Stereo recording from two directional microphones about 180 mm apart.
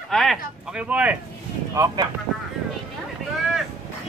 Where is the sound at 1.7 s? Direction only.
20° right (ahead or behind).